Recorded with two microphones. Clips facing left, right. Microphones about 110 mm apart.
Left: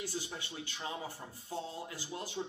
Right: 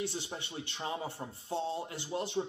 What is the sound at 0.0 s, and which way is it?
Speech, 25° right (ahead or behind).